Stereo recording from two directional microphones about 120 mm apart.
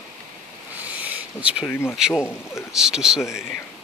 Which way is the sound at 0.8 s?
15° right (ahead or behind).